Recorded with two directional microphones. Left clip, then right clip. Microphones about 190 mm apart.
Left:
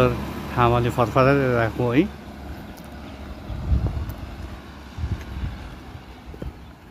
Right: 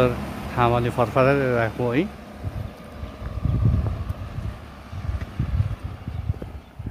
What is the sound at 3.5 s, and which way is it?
Vehicle, 30° right (ahead or behind).